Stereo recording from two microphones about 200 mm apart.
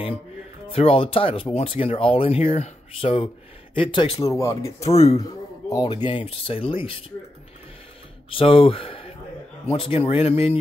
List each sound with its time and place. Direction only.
0.7 s speech: 30° left (ahead or behind)
4.8 s speech: 30° left (ahead or behind)
5.7 s speech: 20° left (ahead or behind)
8.3 s speech: 25° left (ahead or behind)